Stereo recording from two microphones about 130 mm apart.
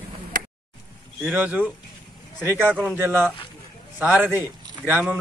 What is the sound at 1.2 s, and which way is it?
Speech, 15° right (ahead or behind).